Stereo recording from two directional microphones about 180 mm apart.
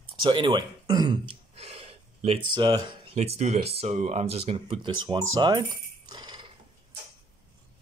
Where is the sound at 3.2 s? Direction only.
35° right (ahead or behind).